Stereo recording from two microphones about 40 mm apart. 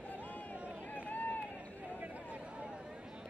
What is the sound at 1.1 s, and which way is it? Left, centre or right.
Run, left.